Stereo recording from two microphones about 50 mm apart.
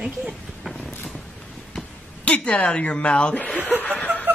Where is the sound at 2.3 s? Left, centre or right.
Left.